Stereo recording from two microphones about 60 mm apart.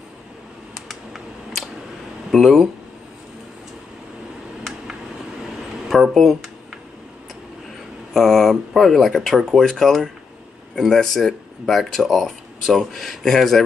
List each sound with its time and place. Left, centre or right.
0.8 s computer keyboard: centre
2.3 s speech: centre
5.9 s speech: centre
8.1 s speech: centre